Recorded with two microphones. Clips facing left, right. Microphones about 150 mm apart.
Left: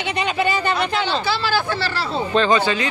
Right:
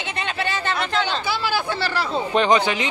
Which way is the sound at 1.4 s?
20° right (ahead or behind).